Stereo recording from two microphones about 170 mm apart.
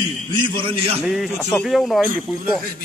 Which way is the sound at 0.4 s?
30° right (ahead or behind).